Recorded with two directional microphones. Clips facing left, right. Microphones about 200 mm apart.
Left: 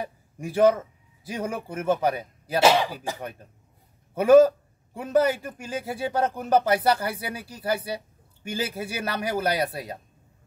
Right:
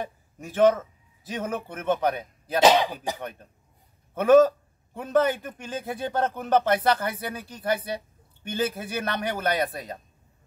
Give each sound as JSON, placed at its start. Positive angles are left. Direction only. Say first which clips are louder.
{"t": 0.0, "sound": "a man's voice", "louder": "left 2 dB", "side_deg": 10}
{"t": 2.6, "sound": "speech", "louder": "right 1 dB", "side_deg": -15}
{"t": 4.1, "sound": "a man's voice", "louder": "left 2 dB", "side_deg": 10}